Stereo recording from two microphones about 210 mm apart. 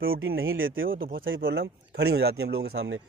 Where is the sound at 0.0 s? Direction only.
70° right (ahead or behind).